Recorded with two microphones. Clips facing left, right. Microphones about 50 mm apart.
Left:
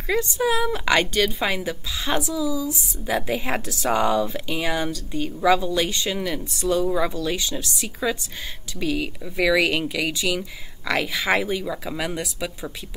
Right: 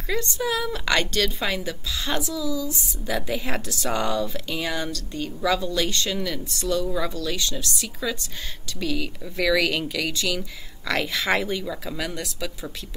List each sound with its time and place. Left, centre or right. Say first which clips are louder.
0.1 s a woman's voice: left 4 dB; centre